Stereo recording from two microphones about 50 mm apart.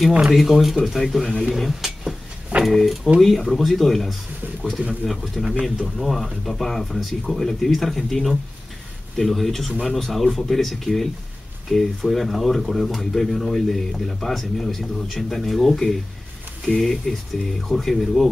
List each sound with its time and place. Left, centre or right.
0.1 s speech: centre
0.4 s speech: centre